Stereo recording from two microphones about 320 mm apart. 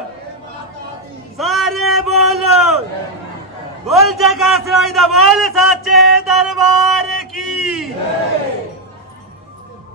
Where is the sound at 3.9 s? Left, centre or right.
Centre.